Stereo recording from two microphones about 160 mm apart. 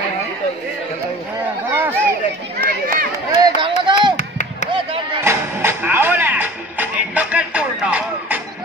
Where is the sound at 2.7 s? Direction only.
65° right (ahead or behind).